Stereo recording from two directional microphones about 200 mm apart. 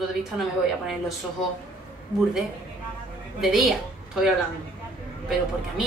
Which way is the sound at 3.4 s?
Centre (ahead or behind).